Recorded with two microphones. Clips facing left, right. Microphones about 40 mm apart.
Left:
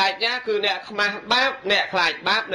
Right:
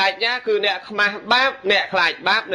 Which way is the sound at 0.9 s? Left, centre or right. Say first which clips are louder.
Right 5 dB; centre.